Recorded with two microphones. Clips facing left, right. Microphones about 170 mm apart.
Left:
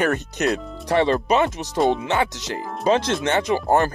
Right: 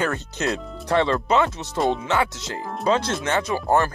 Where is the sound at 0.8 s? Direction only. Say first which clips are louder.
Left 2 dB; 15° left (ahead or behind).